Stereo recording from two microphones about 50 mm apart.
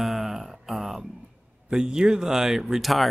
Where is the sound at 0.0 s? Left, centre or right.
Centre.